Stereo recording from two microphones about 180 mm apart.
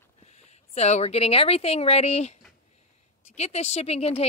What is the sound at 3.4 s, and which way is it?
Speech, 35° left (ahead or behind).